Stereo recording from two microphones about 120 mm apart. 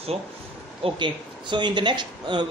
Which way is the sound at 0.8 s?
40° right (ahead or behind).